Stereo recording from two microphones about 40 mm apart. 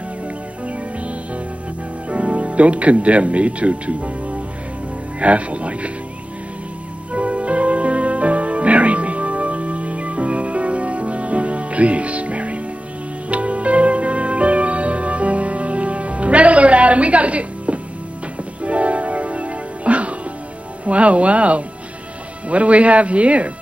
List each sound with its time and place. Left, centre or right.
2.0 s speech: right
7.1 s music: right
20.8 s speech: right